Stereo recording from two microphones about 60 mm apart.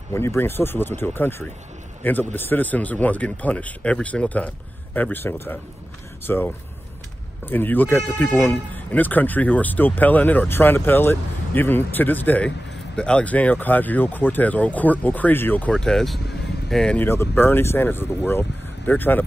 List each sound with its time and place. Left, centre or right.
0.1 s speech: left
15.7 s speech: centre
17.0 s speech: left